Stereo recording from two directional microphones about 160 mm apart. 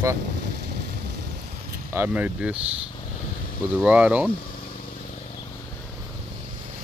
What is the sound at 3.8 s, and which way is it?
Speech, 10° right (ahead or behind).